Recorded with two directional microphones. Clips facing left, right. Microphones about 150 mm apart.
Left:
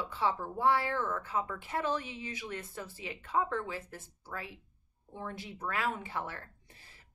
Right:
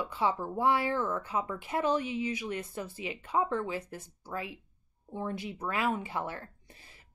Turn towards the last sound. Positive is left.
turn(degrees=-15)  # may be behind; listen again after turning